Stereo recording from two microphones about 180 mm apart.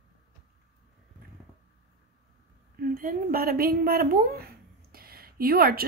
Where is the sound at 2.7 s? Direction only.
50° right (ahead or behind).